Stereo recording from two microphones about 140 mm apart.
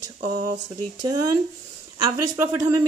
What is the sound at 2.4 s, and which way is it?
Speech, 20° right (ahead or behind).